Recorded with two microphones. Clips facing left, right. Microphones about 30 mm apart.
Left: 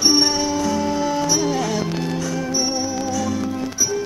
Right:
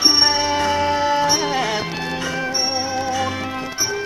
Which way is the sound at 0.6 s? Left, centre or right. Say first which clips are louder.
Right 2 dB; right.